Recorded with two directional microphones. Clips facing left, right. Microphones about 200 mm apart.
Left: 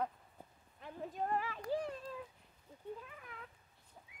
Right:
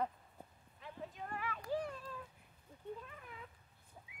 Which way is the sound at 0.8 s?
40° left (ahead or behind).